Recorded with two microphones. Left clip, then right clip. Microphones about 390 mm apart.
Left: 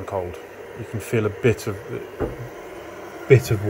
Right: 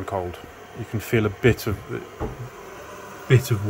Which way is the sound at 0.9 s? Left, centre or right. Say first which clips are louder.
Even; centre.